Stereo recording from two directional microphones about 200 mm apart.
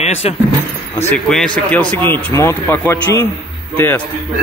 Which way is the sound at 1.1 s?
Centre (ahead or behind).